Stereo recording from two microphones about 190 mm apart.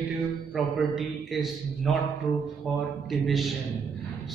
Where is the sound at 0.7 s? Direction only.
Centre (ahead or behind).